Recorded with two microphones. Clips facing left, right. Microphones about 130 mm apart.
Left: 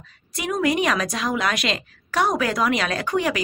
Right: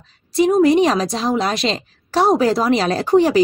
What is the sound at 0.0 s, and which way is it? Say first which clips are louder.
A woman's voice: right 14 dB; 30° right (ahead or behind).